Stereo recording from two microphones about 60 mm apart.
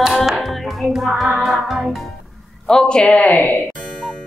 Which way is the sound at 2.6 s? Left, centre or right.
Centre.